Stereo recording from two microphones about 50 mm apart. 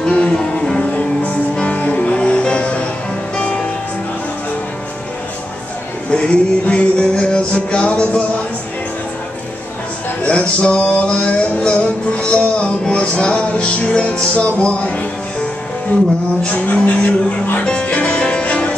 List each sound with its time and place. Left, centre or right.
0.0 s music: centre
0.9 s music: left
6.0 s music: left
10.2 s music: left
16.5 s speech: left
17.8 s music: left